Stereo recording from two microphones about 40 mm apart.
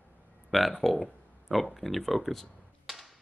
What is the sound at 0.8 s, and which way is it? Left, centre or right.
A man's voice, centre.